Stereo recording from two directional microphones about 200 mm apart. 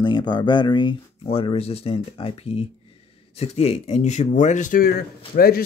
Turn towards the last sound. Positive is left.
turn(degrees=50)  # may be behind; listen again after turning